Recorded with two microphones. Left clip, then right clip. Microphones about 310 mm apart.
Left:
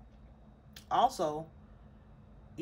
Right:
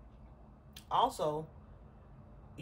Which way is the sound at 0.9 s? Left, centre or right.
Left.